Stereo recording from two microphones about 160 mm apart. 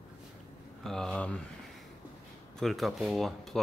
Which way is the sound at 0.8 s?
5° left (ahead or behind).